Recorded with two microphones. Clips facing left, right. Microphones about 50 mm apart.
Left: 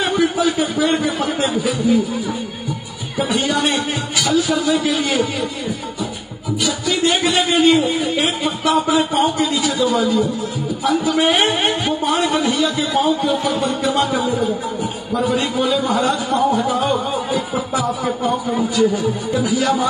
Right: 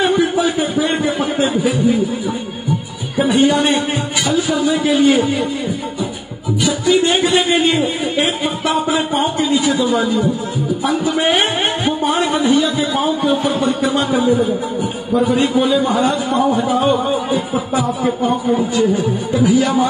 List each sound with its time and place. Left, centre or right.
0.0 s a sound: right
3.2 s a man's voice: right
6.6 s a man's voice: right
19.3 s a man's voice: right